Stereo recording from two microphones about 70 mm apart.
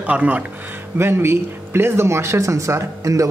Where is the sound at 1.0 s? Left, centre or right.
Right.